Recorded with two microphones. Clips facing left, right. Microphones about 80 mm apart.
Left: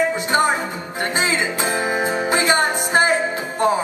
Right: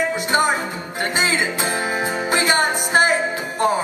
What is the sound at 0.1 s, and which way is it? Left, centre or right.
Music, centre.